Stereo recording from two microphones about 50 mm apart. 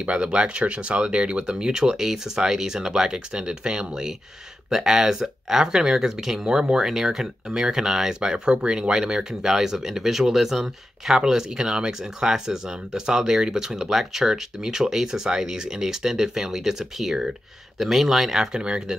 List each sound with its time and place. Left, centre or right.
0.0 s speech: right; by 18.5 s centre
18.5 s speech: centre